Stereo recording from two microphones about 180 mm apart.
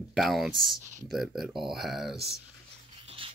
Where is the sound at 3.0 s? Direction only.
30° right (ahead or behind).